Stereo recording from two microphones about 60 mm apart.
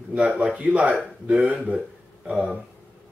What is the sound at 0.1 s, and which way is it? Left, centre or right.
Speech, right.